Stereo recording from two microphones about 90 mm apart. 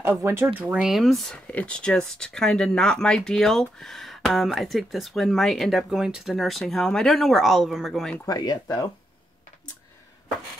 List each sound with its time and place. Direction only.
0.2 s speech: 25° right (ahead or behind)
0.8 s speech: centre (ahead or behind)
8.3 s speech: 45° left (ahead or behind)